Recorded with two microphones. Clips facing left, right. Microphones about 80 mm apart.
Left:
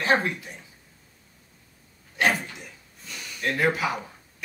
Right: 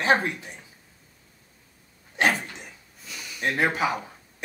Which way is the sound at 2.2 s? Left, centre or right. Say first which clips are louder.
Even; right.